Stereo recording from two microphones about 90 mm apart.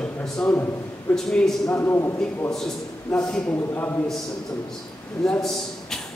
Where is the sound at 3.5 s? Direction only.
25° left (ahead or behind).